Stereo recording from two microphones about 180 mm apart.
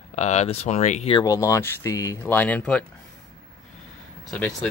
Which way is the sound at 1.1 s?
20° left (ahead or behind).